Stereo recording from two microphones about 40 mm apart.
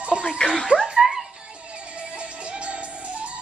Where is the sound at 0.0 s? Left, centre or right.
Right.